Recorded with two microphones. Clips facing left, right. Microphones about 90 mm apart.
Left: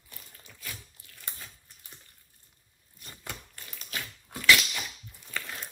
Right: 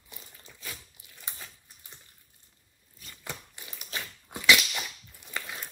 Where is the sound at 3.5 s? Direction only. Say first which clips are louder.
Even; 15° right (ahead or behind).